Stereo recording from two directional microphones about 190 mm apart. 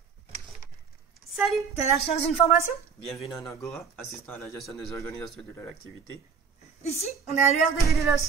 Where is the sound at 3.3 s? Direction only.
15° left (ahead or behind).